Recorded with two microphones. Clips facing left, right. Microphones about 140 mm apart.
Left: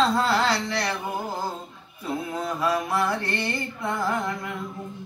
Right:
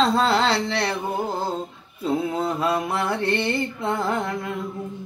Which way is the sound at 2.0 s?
25° right (ahead or behind).